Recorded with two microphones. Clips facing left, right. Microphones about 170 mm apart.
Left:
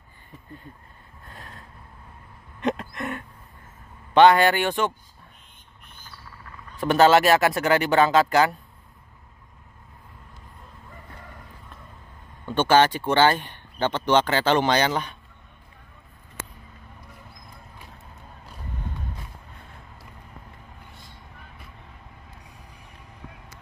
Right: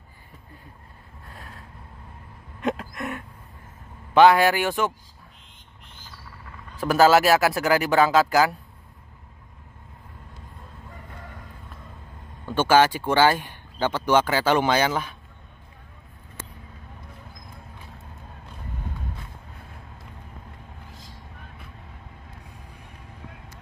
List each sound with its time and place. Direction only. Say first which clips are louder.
1.3 s vehicle: even; centre (ahead or behind)
2.6 s a sound: left 1 dB; centre (ahead or behind)
4.1 s speech: even; 5° right (ahead or behind)
6.8 s speech: even; centre (ahead or behind)
12.4 s speech: even; 10° right (ahead or behind)
16.4 s vehicle: left 2 dB; 75° left (ahead or behind)